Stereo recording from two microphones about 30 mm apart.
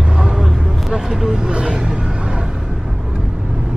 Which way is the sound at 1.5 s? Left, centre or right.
Right.